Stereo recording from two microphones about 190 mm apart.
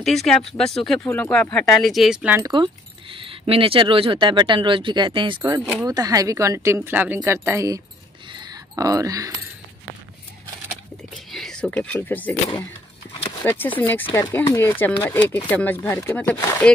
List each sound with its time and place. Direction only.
0.0 s speech: centre (ahead or behind)
2.4 s speech: 25° right (ahead or behind)
8.3 s a sound: 20° right (ahead or behind)
11.3 s speech: 5° left (ahead or behind)